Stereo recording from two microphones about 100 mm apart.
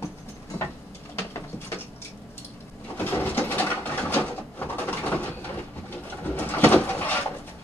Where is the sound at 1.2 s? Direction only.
30° left (ahead or behind).